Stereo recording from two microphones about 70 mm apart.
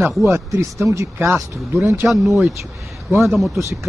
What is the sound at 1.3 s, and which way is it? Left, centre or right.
Speech, right.